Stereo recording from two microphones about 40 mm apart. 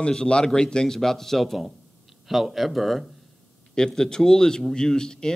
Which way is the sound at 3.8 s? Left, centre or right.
Centre.